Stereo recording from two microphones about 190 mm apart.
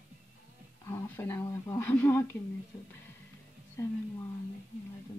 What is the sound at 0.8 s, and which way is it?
Speech, 10° left (ahead or behind).